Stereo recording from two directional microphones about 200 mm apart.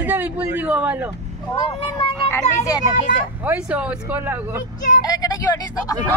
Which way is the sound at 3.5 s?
5° right (ahead or behind).